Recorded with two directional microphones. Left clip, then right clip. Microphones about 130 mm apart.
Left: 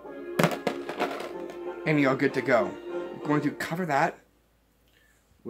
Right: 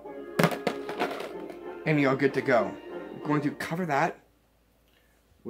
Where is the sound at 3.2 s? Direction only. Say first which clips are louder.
Left 1 dB; 15° left (ahead or behind).